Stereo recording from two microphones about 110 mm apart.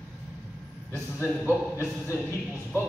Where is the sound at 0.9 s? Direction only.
25° left (ahead or behind).